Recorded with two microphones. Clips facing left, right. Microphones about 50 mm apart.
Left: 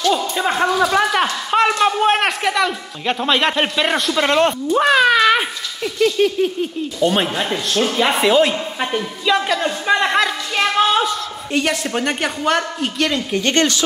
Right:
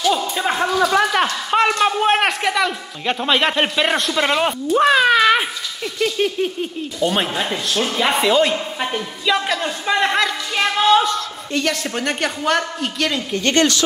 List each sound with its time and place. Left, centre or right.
0.0 s a sound: centre
5.9 s a man's voice: centre
13.3 s speech: centre